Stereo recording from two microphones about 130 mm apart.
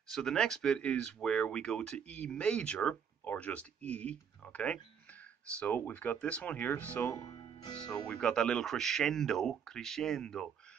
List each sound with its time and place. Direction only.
0.1 s speech: 5° left (ahead or behind)
7.1 s speech: 30° left (ahead or behind)
8.1 s speech: 5° left (ahead or behind)